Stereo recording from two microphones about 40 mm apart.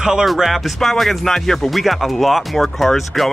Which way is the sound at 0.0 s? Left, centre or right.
Centre.